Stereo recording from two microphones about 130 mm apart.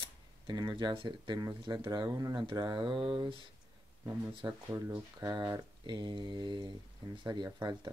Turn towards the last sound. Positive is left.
turn(degrees=-35)  # may be behind; listen again after turning